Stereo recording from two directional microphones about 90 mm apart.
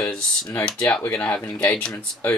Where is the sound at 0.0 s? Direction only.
5° left (ahead or behind).